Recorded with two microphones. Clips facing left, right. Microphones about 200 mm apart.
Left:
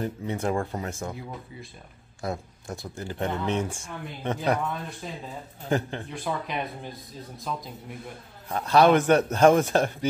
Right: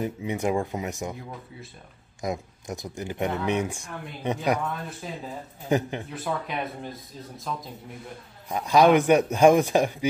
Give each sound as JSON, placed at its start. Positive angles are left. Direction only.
{"t": 0.0, "sound": "a man's voice", "side_deg": -10}
{"t": 2.2, "sound": "a man's voice", "side_deg": -15}
{"t": 5.0, "sound": "speech", "side_deg": 0}
{"t": 5.7, "sound": "a man's voice", "side_deg": -15}
{"t": 6.0, "sound": "speech", "side_deg": 0}
{"t": 8.5, "sound": "a man's voice", "side_deg": -10}